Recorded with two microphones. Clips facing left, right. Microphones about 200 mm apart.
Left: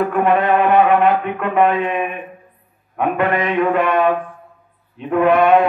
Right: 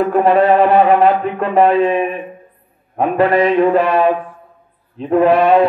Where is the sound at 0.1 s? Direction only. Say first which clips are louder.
Right 4 dB; 35° right (ahead or behind).